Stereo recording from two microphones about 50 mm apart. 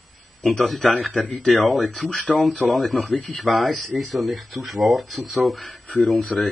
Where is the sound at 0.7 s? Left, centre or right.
Centre.